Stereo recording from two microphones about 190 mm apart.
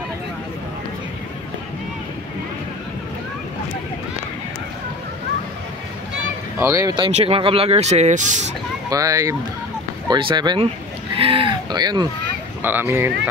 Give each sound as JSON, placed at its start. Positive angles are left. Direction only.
{"t": 6.6, "sound": "speech", "side_deg": -15}
{"t": 7.2, "sound": "speech", "side_deg": -30}
{"t": 8.9, "sound": "speech", "side_deg": -15}